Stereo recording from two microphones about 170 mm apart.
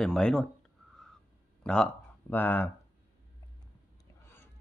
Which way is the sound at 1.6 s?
5° left (ahead or behind).